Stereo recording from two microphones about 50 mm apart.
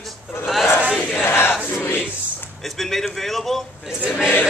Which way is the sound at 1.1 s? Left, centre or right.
Left.